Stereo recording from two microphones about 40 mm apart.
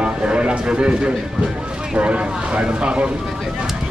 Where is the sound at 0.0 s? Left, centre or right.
Right.